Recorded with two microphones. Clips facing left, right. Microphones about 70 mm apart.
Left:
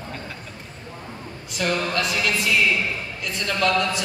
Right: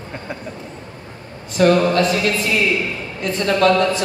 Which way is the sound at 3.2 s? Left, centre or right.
Right.